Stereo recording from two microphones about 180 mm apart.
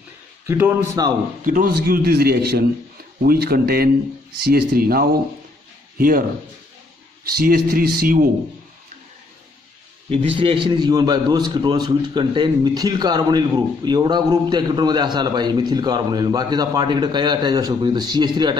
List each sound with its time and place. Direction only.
0.5 s a man's voice: 15° right (ahead or behind)
1.4 s a man's voice: 50° right (ahead or behind)
7.4 s a man's voice: 55° right (ahead or behind)
10.0 s a man's voice: 30° right (ahead or behind)